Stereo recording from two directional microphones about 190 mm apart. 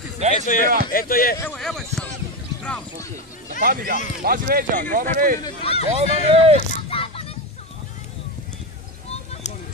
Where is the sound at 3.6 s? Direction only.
50° right (ahead or behind).